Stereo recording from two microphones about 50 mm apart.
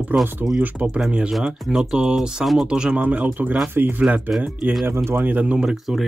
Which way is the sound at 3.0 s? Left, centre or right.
Right.